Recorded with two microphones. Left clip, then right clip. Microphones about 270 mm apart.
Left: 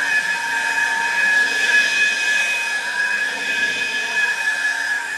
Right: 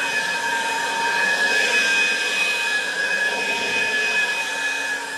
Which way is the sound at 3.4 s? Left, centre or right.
Centre.